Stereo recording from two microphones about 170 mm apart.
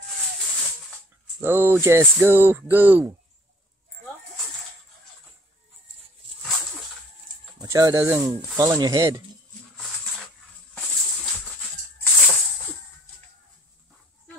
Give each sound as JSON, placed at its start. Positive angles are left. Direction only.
{"t": 1.4, "sound": "speech", "side_deg": -10}
{"t": 7.5, "sound": "speech", "side_deg": -20}
{"t": 12.0, "sound": "music", "side_deg": 15}